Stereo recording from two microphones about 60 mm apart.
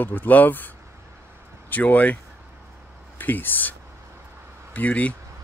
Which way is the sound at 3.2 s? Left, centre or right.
Left.